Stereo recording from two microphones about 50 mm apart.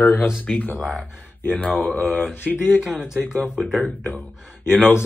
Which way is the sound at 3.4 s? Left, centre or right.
Right.